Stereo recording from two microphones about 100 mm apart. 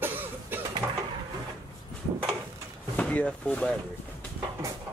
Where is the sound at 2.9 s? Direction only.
15° left (ahead or behind).